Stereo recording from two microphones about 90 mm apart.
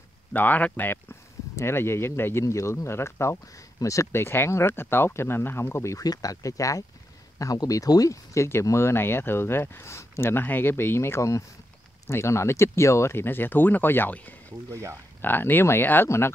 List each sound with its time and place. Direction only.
0.3 s speech: 20° left (ahead or behind)
14.7 s speech: 35° right (ahead or behind)
15.2 s speech: 20° left (ahead or behind)